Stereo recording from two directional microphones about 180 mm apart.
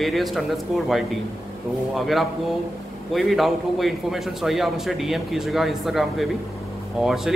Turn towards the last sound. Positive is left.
turn(degrees=0)  # may be behind; listen again after turning